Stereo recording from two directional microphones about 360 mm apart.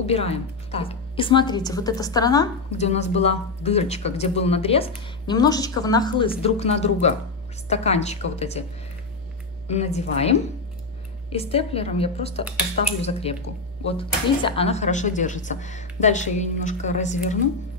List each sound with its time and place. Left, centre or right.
0.0 s a woman's voice: centre
9.7 s a woman's voice: centre